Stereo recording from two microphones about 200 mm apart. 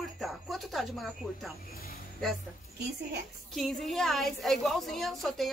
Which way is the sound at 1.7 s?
50° left (ahead or behind).